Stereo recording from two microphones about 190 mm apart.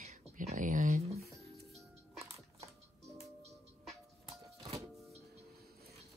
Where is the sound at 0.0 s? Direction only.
40° right (ahead or behind).